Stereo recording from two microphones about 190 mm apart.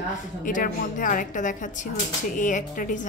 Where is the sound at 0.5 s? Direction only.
45° left (ahead or behind).